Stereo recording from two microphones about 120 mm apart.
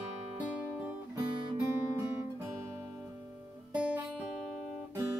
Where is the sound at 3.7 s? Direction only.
10° right (ahead or behind).